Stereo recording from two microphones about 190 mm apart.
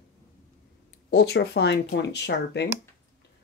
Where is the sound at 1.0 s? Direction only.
60° left (ahead or behind).